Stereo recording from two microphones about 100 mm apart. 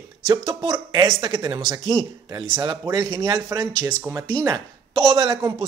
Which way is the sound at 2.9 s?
40° right (ahead or behind).